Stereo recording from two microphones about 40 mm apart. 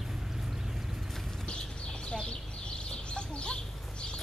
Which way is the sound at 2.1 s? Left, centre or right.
Left.